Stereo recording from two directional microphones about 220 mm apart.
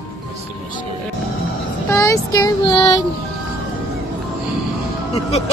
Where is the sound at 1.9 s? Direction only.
15° left (ahead or behind).